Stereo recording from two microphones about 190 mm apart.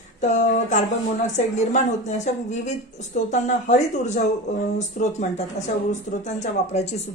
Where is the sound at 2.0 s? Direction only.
40° left (ahead or behind).